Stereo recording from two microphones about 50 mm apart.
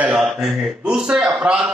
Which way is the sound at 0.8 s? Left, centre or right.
Centre.